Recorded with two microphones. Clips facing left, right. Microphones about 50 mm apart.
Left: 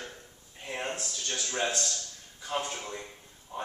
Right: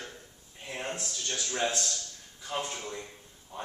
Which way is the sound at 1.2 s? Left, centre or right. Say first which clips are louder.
Right 1 dB; centre.